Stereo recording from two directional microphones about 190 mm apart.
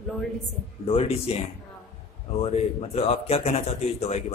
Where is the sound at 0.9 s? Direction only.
35° left (ahead or behind).